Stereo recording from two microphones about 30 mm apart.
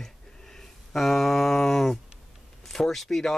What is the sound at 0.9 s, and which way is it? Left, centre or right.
Speech, centre.